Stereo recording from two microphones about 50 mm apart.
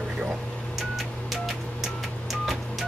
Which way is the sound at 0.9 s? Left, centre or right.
Centre.